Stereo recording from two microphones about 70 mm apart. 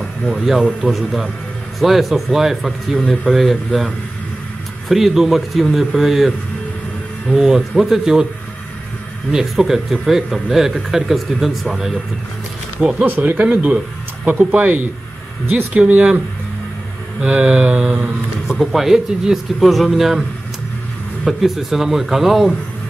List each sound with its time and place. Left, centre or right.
0.3 s speech: centre
1.8 s speech: centre
9.3 s speech: centre
13.0 s speech: right
17.2 s speech: centre
18.6 s speech: centre